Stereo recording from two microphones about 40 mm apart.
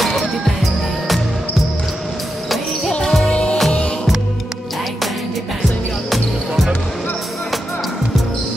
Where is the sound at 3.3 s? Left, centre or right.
Left.